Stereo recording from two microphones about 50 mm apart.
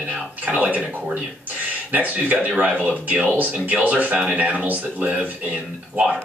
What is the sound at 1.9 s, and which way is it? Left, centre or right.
Speech, right.